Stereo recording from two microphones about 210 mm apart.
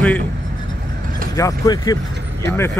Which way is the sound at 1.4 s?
15° left (ahead or behind).